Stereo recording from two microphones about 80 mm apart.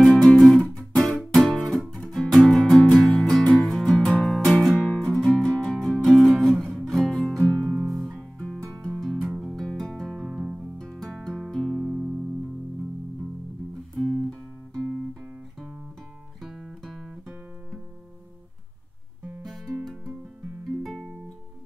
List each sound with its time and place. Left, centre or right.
0.1 s music: centre
0.4 s guitar: centre
1.9 s music: centre
3.9 s music: centre
4.3 s music: centre
7.7 s music: centre
8.1 s guitar: centre
8.9 s music: centre
10.8 s music: centre
11.9 s music: centre
13.9 s music: centre
16.3 s guitar: centre
19.4 s music: centre